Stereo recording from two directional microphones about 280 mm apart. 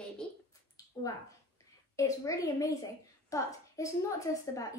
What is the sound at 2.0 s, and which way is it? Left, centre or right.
A woman's voice, centre.